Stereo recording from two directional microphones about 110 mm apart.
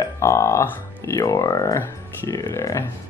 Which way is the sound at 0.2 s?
25° left (ahead or behind).